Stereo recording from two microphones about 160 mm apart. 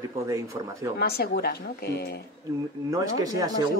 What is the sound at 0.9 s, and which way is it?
Speech, 85° left.